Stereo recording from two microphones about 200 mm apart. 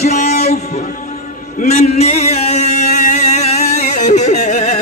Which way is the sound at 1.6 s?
35° left (ahead or behind).